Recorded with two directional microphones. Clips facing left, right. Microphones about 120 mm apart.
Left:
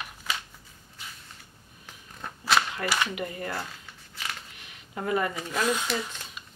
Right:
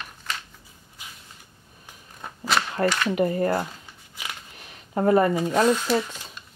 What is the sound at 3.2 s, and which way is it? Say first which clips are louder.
Speech: right 11 dB; 40° right (ahead or behind).